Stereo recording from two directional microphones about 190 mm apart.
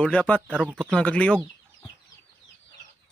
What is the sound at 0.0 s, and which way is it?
Speech, 5° left (ahead or behind).